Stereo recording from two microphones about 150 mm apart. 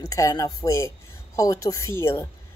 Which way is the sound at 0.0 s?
20° left (ahead or behind).